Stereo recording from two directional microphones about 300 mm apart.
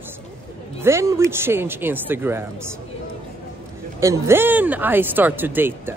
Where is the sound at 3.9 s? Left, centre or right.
Centre.